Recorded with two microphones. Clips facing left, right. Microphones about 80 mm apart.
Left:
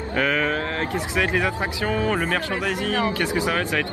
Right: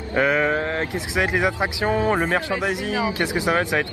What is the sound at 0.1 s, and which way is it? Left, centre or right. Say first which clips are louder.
Speech: right 3 dB; right.